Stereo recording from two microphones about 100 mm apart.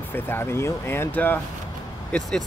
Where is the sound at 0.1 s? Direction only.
20° left (ahead or behind).